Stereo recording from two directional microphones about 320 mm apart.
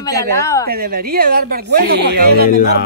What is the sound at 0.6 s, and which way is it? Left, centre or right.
Speech, right.